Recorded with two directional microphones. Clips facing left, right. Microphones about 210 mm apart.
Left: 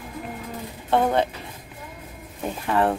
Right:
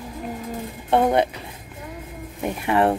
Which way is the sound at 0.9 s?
15° right (ahead or behind).